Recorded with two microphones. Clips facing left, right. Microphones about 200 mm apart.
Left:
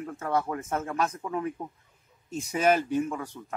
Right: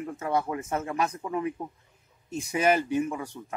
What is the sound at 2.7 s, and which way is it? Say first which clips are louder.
Speech: even; 5° right (ahead or behind).